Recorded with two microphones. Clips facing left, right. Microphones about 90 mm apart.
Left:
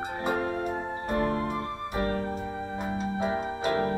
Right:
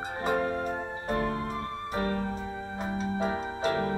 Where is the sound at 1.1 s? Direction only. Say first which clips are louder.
Left 3 dB; 45° left (ahead or behind).